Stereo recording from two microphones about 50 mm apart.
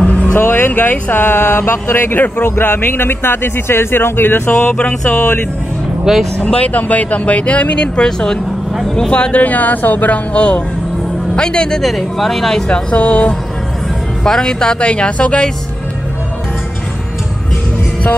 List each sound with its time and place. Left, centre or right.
0.0 s music: left
0.3 s speech: left
4.7 s speech: left
6.1 s speech: centre
6.4 s speech: left; by 9.1 s centre
9.1 s speech: left
11.8 s speech: centre
12.6 s speech: left
14.2 s speech: centre